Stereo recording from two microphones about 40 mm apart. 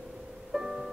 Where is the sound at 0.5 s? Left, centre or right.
Centre.